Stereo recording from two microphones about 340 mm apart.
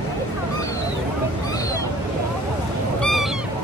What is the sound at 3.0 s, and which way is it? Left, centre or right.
Goose, centre.